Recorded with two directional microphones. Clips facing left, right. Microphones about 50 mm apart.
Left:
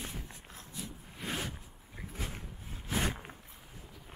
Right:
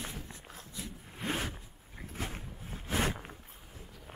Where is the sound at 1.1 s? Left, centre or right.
Right.